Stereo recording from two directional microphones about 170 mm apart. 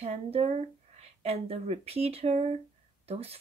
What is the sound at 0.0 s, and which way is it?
Speech, 35° right (ahead or behind).